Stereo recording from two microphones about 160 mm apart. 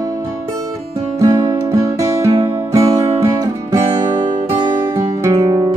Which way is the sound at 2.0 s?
20° right (ahead or behind).